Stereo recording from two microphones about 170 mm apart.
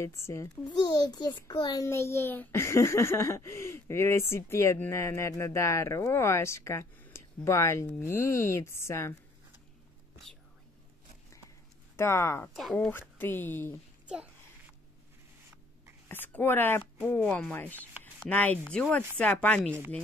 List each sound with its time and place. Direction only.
0.0 s a child's voice: 15° left (ahead or behind)
10.3 s whispering: 5° left (ahead or behind)
12.0 s a child's voice: 15° left (ahead or behind)
14.0 s a child's voice: 5° right (ahead or behind)
16.1 s a child's voice: 10° left (ahead or behind)